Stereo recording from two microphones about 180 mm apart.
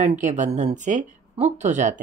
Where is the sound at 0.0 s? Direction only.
40° right (ahead or behind).